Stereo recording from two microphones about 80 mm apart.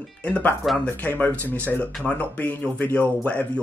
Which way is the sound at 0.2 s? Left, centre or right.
Centre.